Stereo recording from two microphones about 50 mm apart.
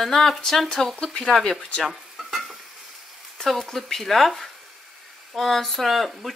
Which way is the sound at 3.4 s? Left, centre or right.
Centre.